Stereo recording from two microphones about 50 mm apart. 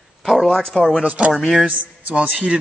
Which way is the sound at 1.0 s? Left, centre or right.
Right.